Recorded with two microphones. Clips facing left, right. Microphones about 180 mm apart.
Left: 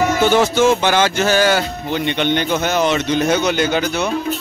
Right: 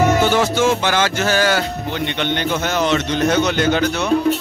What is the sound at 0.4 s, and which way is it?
Music, 20° left (ahead or behind).